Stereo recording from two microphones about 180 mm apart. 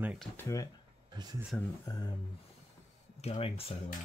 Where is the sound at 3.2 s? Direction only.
35° left (ahead or behind).